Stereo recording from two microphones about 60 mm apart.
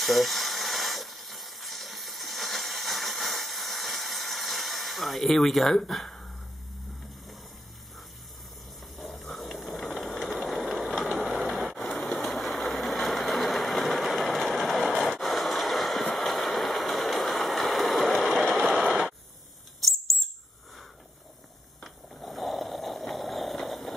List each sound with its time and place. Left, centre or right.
0.0 s steam: centre
8.9 s a sound: centre
9.9 s vehicle: centre
10.7 s vehicle: centre
11.3 s vehicle: centre
11.9 s engine: centre
14.9 s a sound: centre
19.8 s whistle: centre
21.8 s a sound: centre